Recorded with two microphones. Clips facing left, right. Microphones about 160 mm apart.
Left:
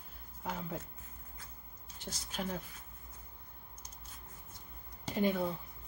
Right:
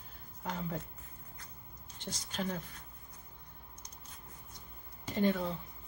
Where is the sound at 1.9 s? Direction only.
5° left (ahead or behind).